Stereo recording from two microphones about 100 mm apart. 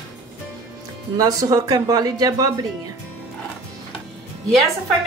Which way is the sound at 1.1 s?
40° right (ahead or behind).